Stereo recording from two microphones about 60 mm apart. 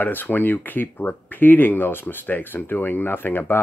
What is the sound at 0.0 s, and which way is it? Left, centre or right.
Speech, left.